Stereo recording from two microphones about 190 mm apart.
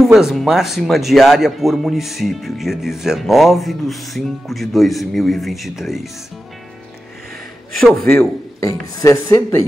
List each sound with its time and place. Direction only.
0.0 s speech: centre (ahead or behind)
7.8 s a man's voice: centre (ahead or behind)
8.6 s speech: 20° left (ahead or behind)